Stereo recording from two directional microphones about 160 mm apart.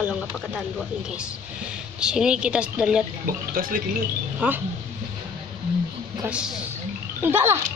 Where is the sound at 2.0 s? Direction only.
5° right (ahead or behind).